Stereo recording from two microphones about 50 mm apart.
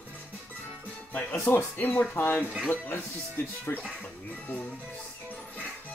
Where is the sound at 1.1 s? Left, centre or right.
Left.